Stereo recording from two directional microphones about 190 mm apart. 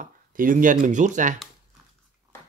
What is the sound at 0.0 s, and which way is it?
Speech, 45° right (ahead or behind).